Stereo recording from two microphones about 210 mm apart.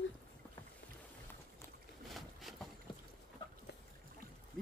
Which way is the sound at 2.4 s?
Centre (ahead or behind).